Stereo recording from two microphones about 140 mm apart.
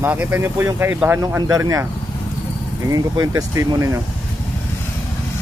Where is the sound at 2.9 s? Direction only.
25° right (ahead or behind).